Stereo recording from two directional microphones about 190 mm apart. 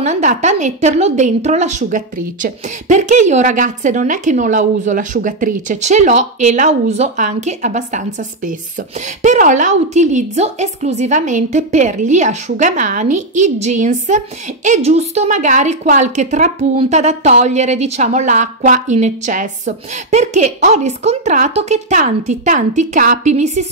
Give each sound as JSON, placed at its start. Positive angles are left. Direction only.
{"t": 0.0, "sound": "a woman's voice", "side_deg": -40}
{"t": 9.2, "sound": "a woman's voice", "side_deg": -40}